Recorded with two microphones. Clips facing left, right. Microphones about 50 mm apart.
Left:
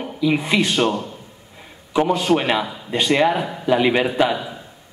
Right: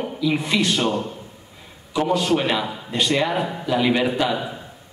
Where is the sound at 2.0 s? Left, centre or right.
Centre.